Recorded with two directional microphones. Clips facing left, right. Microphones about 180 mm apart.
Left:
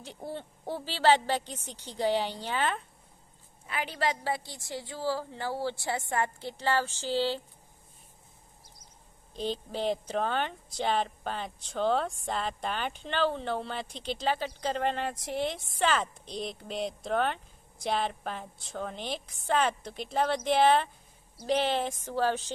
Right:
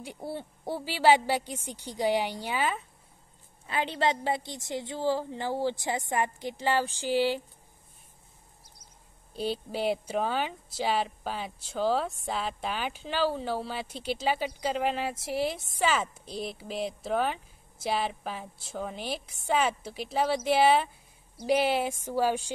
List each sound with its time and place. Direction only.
0.0 s a woman's voice: 10° right (ahead or behind)
3.6 s a woman's voice: 25° right (ahead or behind)
9.3 s a woman's voice: 10° right (ahead or behind)